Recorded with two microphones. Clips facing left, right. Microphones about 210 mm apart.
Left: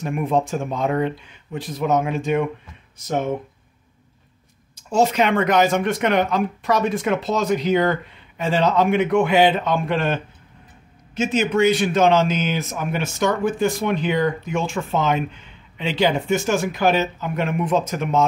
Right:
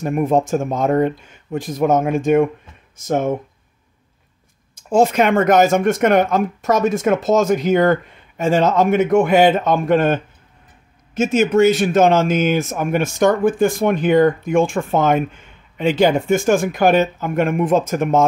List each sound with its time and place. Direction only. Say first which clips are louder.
0.0 s speech: right 4 dB; 45° right (ahead or behind)
4.7 s speech: right 4 dB; 50° right (ahead or behind)